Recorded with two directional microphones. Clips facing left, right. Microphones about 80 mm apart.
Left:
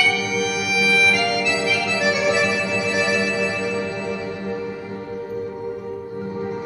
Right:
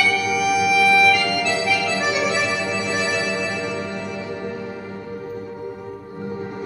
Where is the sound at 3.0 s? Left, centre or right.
Centre.